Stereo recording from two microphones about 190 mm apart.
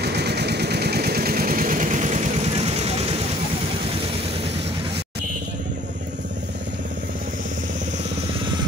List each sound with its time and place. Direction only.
0.0 s vehicle: 60° right (ahead or behind); by 3.2 s 30° right (ahead or behind)